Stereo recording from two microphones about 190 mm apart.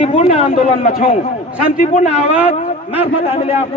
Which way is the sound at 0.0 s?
30° left (ahead or behind).